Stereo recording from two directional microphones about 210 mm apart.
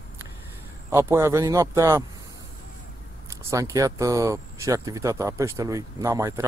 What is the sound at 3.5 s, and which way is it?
Speech, 15° right (ahead or behind).